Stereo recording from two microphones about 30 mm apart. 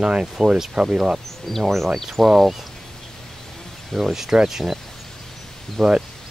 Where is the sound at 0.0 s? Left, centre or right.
Right.